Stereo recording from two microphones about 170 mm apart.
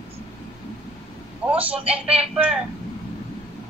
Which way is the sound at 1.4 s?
10° right (ahead or behind).